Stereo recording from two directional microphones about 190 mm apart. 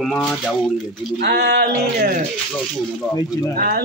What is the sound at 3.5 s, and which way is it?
Speech, 50° right (ahead or behind).